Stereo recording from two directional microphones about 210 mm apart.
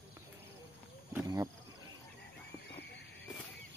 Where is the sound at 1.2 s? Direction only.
15° right (ahead or behind).